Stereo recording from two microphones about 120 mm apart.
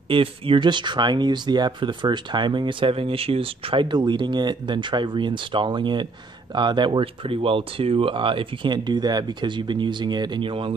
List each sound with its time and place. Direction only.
0.1 s speech: 45° right (ahead or behind)